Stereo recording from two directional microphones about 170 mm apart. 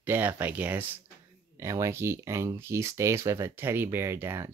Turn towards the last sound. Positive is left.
turn(degrees=-15)  # may be behind; listen again after turning